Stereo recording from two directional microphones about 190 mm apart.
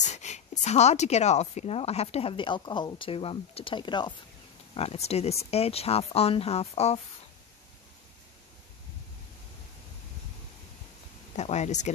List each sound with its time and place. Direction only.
0.0 s speech: 35° left (ahead or behind)
11.3 s speech: 35° left (ahead or behind)